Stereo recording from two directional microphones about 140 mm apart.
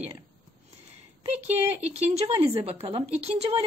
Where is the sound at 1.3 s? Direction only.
50° right (ahead or behind).